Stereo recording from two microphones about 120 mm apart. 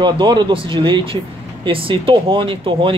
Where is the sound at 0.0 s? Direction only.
40° right (ahead or behind).